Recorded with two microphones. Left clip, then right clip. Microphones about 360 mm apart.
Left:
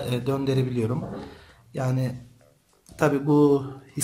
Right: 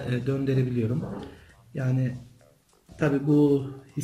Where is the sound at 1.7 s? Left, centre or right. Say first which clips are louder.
Left 3 dB; centre.